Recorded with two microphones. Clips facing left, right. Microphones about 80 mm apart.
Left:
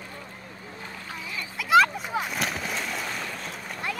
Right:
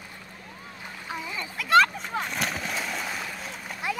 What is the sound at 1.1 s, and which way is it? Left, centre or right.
Splash, centre.